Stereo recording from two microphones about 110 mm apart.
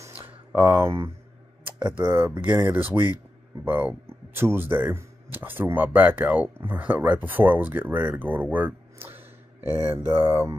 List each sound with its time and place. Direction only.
0.7 s speech: 25° right (ahead or behind)